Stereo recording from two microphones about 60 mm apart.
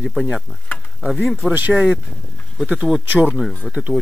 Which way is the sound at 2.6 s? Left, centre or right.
Centre.